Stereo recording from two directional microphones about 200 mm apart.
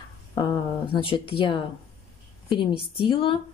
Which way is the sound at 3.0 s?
25° left (ahead or behind).